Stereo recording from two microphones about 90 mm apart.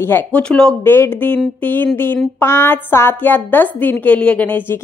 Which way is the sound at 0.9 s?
25° left (ahead or behind).